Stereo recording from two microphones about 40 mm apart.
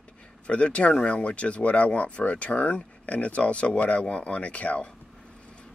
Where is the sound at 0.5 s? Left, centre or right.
Left.